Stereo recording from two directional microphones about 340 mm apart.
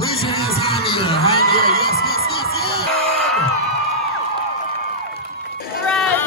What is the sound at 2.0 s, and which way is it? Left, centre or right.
Music, left.